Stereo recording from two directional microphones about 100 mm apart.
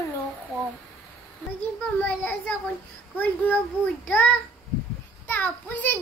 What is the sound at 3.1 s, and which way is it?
Child singing, 20° left (ahead or behind).